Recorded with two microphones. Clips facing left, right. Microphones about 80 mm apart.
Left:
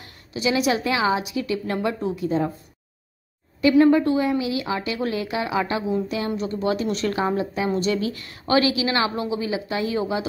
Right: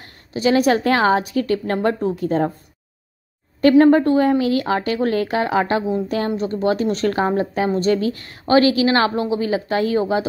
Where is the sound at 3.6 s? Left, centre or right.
Right.